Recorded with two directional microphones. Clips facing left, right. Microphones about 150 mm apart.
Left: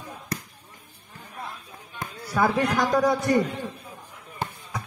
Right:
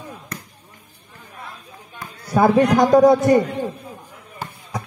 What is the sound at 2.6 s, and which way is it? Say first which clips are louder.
Speech: right 8 dB; 45° right (ahead or behind).